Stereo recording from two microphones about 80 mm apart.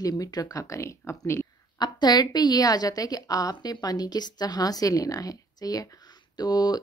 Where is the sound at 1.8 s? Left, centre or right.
Left.